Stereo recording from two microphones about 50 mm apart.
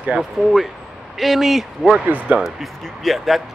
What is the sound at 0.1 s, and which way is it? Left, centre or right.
A man's voice, centre.